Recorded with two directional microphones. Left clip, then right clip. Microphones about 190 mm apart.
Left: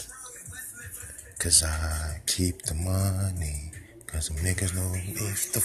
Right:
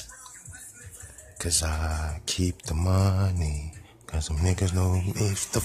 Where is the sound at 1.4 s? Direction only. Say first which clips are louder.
Left 2 dB; 15° right (ahead or behind).